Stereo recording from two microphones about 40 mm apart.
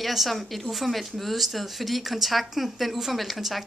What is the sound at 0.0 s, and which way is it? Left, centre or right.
Speech, centre.